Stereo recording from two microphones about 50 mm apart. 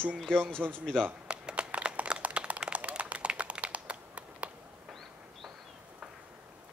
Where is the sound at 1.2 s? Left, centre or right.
Right.